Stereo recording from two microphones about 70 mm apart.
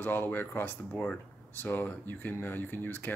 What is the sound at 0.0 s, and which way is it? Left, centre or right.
Speech, left.